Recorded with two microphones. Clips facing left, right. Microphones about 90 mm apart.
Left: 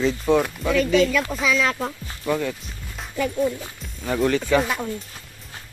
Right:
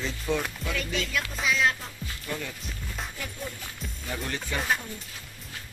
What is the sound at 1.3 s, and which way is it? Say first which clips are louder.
Speech: left 4 dB; 70° left (ahead or behind).